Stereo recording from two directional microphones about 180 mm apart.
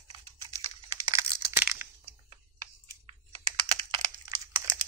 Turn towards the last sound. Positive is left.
turn(degrees=-20)  # may be behind; listen again after turning